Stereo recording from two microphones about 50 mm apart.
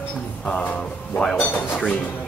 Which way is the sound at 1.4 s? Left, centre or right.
Left.